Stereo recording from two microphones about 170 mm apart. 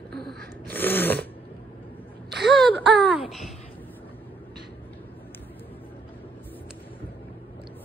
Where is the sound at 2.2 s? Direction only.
75° right (ahead or behind).